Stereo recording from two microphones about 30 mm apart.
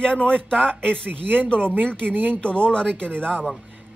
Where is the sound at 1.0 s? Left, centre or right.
Right.